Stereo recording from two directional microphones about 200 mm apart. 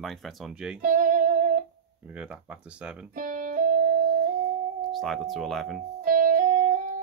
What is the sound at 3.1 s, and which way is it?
Music, 40° right (ahead or behind).